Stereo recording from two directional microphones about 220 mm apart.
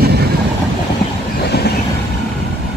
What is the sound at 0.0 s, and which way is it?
Train, 45° right (ahead or behind).